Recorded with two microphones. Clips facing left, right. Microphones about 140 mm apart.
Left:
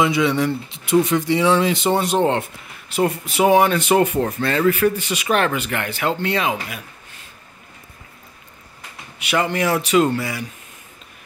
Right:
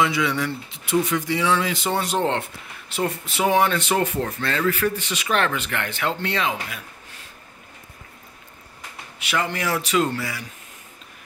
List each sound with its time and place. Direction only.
0.0 s speech: 20° left (ahead or behind)
9.2 s speech: 20° left (ahead or behind)